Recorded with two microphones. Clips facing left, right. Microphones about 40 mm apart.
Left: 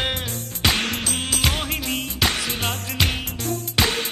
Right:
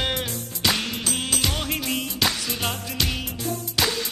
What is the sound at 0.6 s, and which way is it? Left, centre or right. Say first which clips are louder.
Music: left 2 dB; left.